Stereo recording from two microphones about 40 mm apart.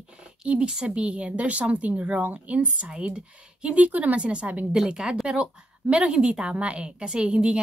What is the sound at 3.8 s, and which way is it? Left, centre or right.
Speech, right.